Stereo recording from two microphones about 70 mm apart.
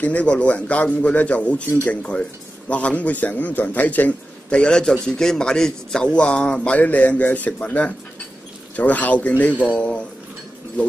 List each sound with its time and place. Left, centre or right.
0.0 s a man's voice: centre